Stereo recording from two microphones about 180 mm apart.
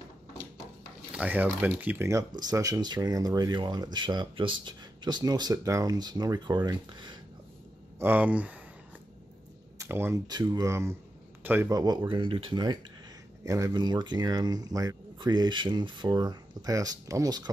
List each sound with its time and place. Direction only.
1.1 s speech: 10° right (ahead or behind); by 7.2 s 25° right (ahead or behind)
8.0 s speech: 10° right (ahead or behind)
9.8 s speech: 15° right (ahead or behind)